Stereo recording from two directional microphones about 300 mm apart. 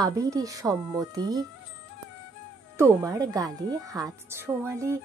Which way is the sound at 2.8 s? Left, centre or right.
Centre.